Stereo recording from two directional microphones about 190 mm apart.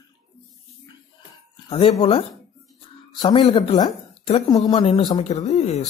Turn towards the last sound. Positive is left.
turn(degrees=35)  # may be behind; listen again after turning